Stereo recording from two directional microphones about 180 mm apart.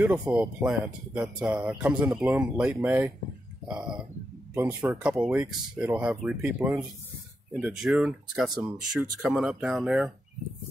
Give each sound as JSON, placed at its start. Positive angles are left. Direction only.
{"t": 0.0, "sound": "speech", "side_deg": -5}
{"t": 4.6, "sound": "speech", "side_deg": -15}